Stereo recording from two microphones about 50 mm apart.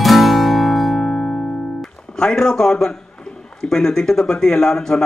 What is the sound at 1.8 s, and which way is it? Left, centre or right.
A man's voice, centre.